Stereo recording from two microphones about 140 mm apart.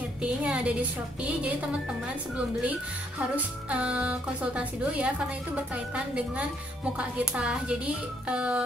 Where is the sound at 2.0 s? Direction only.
10° right (ahead or behind).